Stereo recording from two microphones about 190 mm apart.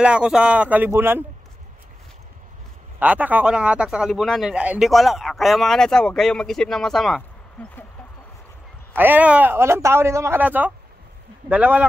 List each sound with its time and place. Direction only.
0.0 s a man's voice: 5° right (ahead or behind)
3.0 s speech: 5° right (ahead or behind)
8.9 s a man's voice: 10° right (ahead or behind)